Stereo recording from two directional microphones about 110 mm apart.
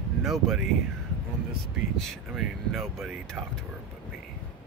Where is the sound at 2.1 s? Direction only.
Centre (ahead or behind).